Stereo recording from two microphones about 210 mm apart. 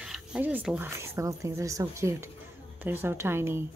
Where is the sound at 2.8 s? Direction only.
10° right (ahead or behind).